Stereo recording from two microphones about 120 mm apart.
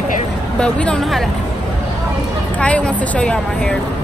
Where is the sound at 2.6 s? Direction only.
10° left (ahead or behind).